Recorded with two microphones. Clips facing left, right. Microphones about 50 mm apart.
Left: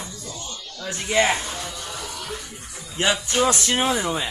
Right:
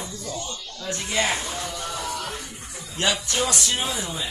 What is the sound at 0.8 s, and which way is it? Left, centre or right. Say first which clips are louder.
Speech: left 5 dB; centre.